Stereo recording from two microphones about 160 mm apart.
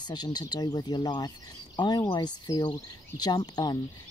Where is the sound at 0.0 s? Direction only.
25° left (ahead or behind).